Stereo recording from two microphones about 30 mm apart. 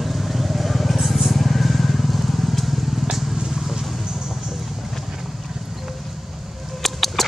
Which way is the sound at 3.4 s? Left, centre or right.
Centre.